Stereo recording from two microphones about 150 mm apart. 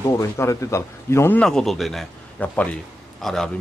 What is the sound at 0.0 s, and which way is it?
Speech, 20° left (ahead or behind).